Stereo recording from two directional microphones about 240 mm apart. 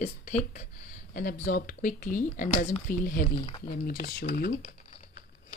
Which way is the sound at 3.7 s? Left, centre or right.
Left.